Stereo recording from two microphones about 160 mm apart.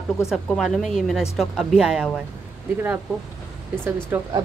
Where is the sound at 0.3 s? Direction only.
Centre (ahead or behind).